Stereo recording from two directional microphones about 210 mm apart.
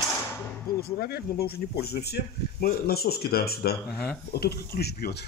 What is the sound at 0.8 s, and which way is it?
Speech, 45° left (ahead or behind).